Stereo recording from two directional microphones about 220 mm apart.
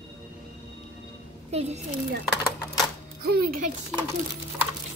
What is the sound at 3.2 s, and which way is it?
Speech, 40° right (ahead or behind).